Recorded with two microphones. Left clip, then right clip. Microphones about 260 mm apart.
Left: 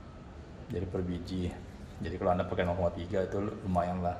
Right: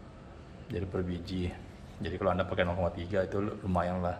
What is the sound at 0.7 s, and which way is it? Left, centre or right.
Speech, centre.